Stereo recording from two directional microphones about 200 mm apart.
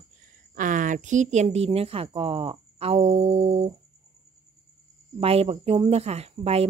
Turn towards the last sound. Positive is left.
turn(degrees=-30)  # may be behind; listen again after turning